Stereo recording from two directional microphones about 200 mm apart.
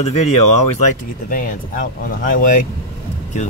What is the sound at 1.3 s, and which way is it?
Speech, 40° left (ahead or behind).